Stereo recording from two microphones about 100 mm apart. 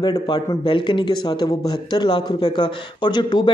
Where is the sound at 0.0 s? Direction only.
40° left (ahead or behind).